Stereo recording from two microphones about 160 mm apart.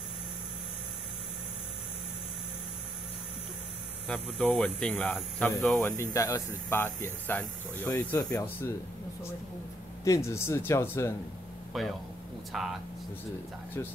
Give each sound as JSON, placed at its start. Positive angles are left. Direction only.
{"t": 4.1, "sound": "speech", "side_deg": 5}
{"t": 5.8, "sound": "speech", "side_deg": 15}
{"t": 10.0, "sound": "speech", "side_deg": 20}
{"t": 11.7, "sound": "speech", "side_deg": 0}